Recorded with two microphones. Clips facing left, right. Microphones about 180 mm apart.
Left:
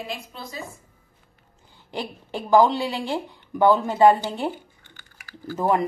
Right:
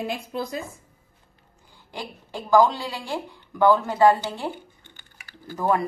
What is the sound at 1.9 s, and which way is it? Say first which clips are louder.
Speech: left 4 dB; 20° left (ahead or behind).